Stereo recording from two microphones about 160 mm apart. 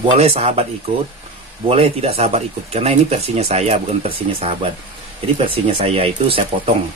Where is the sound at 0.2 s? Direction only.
40° right (ahead or behind).